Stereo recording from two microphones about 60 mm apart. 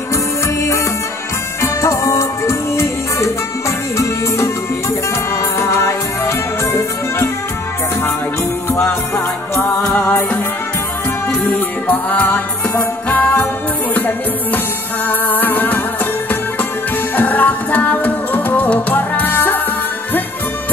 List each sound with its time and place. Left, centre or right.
1.6 s music: left
11.9 s music: left
17.1 s music: left